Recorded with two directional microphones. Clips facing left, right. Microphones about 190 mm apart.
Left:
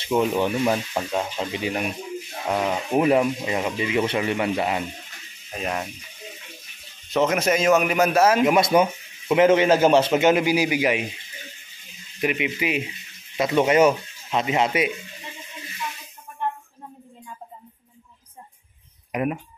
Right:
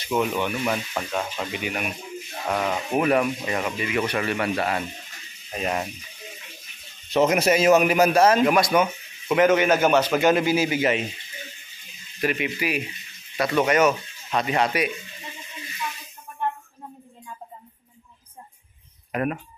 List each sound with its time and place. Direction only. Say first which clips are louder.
0.0 s speech: left 3 dB; 25° left (ahead or behind)
2.5 s speech: left 2 dB; 15° left (ahead or behind)
5.6 s a man's voice: right 1 dB; 5° right (ahead or behind)
7.1 s a man's voice: right 1 dB; 10° right (ahead or behind)
8.5 s speech: left 2 dB; 25° left (ahead or behind)
12.2 s speech: left 1 dB; 15° left (ahead or behind)
19.1 s speech: left 1 dB; 15° left (ahead or behind)